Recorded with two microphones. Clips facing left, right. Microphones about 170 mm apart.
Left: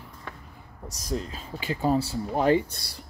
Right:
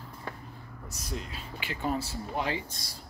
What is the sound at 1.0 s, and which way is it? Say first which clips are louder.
Speech: left 7 dB; 40° left (ahead or behind).